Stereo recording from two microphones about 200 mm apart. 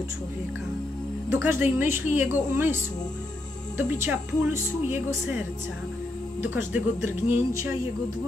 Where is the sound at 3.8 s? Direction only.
10° right (ahead or behind).